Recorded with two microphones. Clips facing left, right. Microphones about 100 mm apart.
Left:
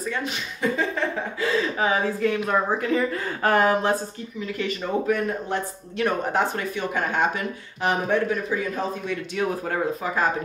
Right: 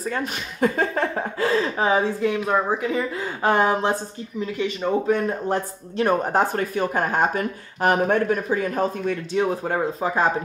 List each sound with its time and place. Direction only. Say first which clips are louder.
0.1 s speech: right 2 dB; 50° right (ahead or behind)
1.8 s speech: right 4 dB; 30° right (ahead or behind)
2.2 s speech: right 1 dB; 15° right (ahead or behind); by 9.1 s 45° right (ahead or behind)
9.3 s speech: right 3 dB; 25° right (ahead or behind)